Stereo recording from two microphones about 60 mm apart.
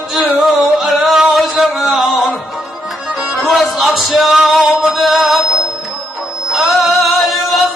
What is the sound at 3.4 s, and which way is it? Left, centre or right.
Music, centre.